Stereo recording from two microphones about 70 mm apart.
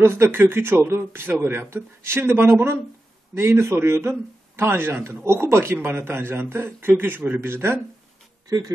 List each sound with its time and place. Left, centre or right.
0.0 s speech: right
8.5 s speech: right